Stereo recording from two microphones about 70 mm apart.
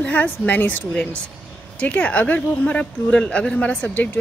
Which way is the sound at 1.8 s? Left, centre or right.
Centre.